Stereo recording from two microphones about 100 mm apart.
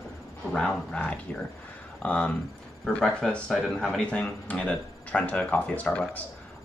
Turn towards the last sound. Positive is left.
turn(degrees=15)  # may be behind; listen again after turning